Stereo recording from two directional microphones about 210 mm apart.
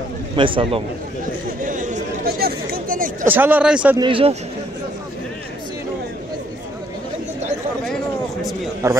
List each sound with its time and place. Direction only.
0.4 s a man's voice: 25° right (ahead or behind)
1.6 s chatter: 40° right (ahead or behind)
3.3 s a man's voice: 10° right (ahead or behind)
4.0 s a man's voice: 25° right (ahead or behind)
8.8 s a man's voice: 15° right (ahead or behind)